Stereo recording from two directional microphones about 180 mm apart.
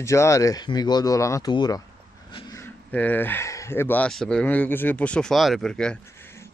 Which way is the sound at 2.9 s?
10° left (ahead or behind).